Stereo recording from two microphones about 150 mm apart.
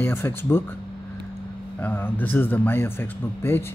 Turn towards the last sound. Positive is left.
turn(degrees=15)  # may be behind; listen again after turning